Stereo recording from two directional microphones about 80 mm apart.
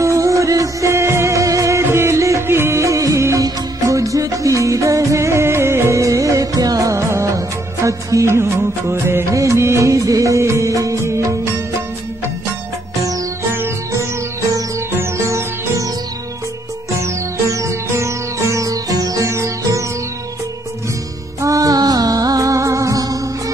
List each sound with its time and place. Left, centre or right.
0.0 s music: right
14.9 s music: right
17.0 s music: right
21.4 s music: right